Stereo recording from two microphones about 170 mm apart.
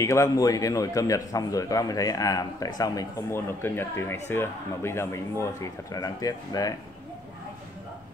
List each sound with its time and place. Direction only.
0.0 s a man's voice: 20° left (ahead or behind)